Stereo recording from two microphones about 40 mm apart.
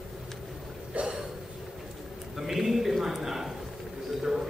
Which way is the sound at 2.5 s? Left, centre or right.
Centre.